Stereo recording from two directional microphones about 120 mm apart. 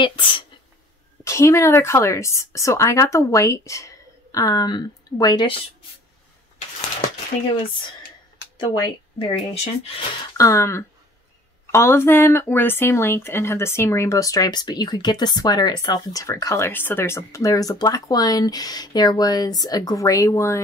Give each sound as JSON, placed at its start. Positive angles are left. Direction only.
{"t": 0.0, "sound": "speech", "side_deg": 45}
{"t": 1.2, "sound": "speech", "side_deg": 25}
{"t": 8.5, "sound": "speech", "side_deg": 40}
{"t": 10.3, "sound": "speech", "side_deg": 25}